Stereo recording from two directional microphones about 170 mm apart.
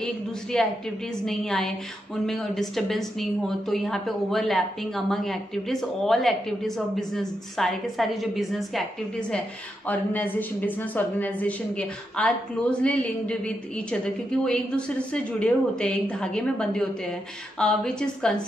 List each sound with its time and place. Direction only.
0.0 s speech: 5° left (ahead or behind)
9.8 s a woman's voice: 10° left (ahead or behind)